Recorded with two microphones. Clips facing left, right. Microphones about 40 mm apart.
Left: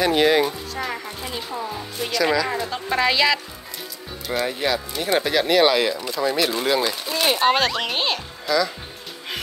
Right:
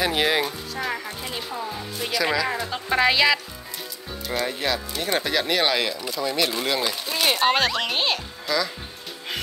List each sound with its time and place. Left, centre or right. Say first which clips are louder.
0.0 s speech: left 4 dB; centre
4.3 s speech: left 3 dB; centre